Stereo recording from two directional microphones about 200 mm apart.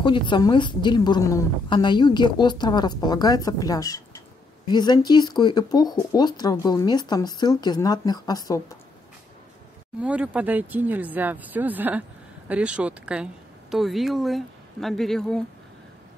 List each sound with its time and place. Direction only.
0.0 s a woman's voice: 25° left (ahead or behind)
10.0 s speech: 5° right (ahead or behind)